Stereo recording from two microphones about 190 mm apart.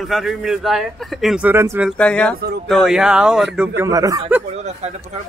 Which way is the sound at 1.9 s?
5° left (ahead or behind).